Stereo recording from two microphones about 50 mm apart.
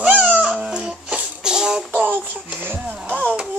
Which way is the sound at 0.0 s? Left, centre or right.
Right.